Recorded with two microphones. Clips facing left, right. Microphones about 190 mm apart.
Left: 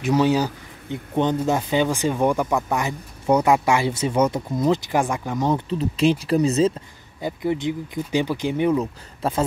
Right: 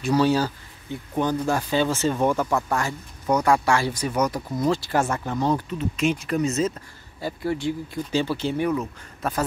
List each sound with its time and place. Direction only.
0.0 s speech: 15° left (ahead or behind)
3.3 s speech: 30° left (ahead or behind)
5.7 s speech: 35° left (ahead or behind)
7.2 s speech: 20° left (ahead or behind)
8.7 s speech: 30° left (ahead or behind)